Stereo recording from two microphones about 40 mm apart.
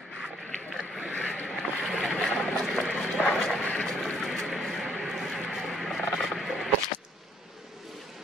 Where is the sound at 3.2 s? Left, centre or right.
Centre.